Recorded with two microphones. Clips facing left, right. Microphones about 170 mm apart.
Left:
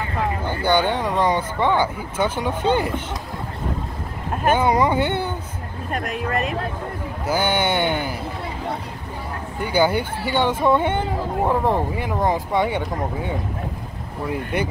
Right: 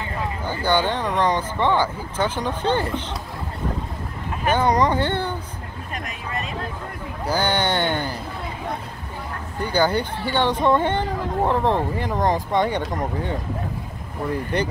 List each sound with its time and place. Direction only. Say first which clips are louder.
0.7 s speech: left 2 dB; 10° left (ahead or behind)
4.6 s speech: right 1 dB; 10° left (ahead or behind)
5.9 s speech: left 9 dB; 55° left (ahead or behind)
7.2 s speech: left 1 dB; 10° left (ahead or behind)
9.6 s speech: left 1 dB; 10° left (ahead or behind)
14.3 s speech: even; 10° left (ahead or behind)